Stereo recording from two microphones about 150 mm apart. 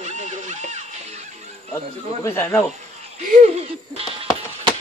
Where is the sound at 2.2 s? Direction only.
15° left (ahead or behind).